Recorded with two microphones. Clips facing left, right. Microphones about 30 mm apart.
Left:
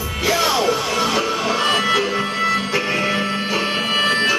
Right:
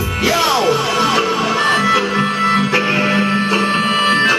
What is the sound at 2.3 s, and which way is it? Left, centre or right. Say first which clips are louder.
Music: right 5 dB; right.